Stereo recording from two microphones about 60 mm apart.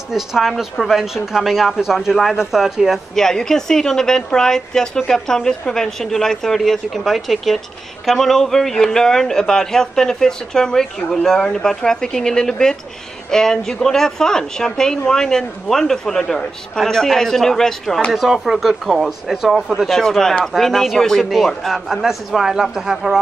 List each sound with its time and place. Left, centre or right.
0.1 s speech: centre
3.2 s a woman's voice: centre
19.9 s a woman's voice: centre